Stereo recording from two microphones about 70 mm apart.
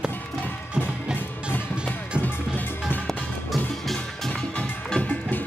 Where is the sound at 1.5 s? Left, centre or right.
Left.